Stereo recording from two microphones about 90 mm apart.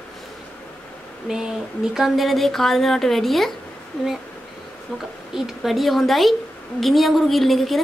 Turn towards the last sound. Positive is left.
turn(degrees=0)  # may be behind; listen again after turning